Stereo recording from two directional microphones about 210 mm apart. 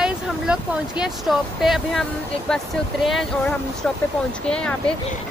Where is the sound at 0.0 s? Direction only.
5° right (ahead or behind).